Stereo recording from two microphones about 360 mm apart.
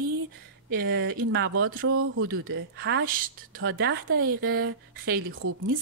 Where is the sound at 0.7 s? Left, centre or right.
Right.